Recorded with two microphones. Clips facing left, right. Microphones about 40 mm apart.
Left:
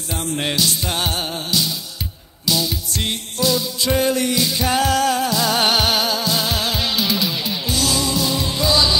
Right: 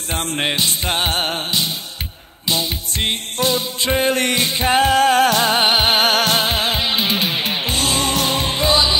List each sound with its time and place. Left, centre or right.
0.1 s music: right
0.4 s music: right
5.1 s music: right
5.6 s music: right
5.9 s music: right
6.4 s music: right